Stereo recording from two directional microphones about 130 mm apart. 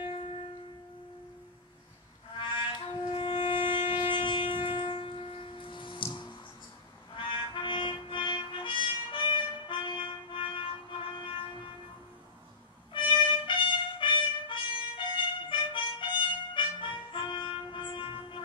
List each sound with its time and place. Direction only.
0.0 s shofar: 45° left (ahead or behind)
2.3 s music: 40° left (ahead or behind)
7.2 s music: 40° left (ahead or behind)
13.5 s music: 40° left (ahead or behind)